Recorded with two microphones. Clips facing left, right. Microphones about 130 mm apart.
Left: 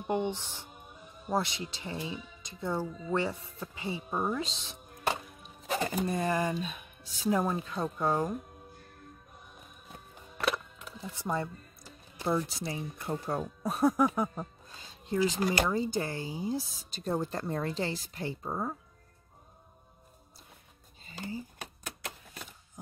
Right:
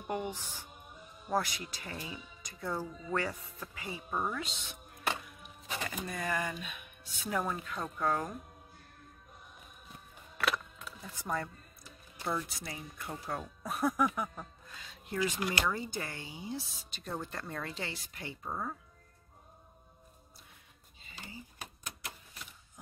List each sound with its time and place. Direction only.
0.0 s speech: 25° left (ahead or behind)
4.1 s speech: 15° left (ahead or behind)
4.4 s chopping: 30° left (ahead or behind)
7.3 s speech: 25° left (ahead or behind)
10.3 s speech: 25° left (ahead or behind)
21.0 s a sound: 40° left (ahead or behind)